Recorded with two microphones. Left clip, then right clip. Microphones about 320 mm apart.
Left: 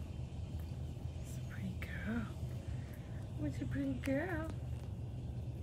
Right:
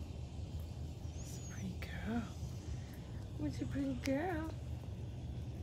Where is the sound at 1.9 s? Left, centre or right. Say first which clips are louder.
Even; right.